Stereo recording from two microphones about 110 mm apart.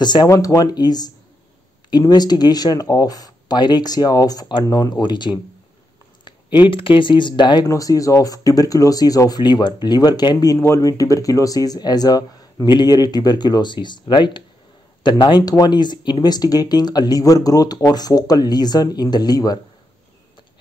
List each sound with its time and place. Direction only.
0.0 s speech: 40° left (ahead or behind)
0.3 s speech: 30° left (ahead or behind)
7.6 s speech: 30° left (ahead or behind)